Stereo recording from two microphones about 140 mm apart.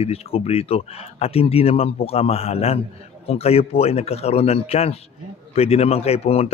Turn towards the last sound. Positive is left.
turn(degrees=45)  # may be behind; listen again after turning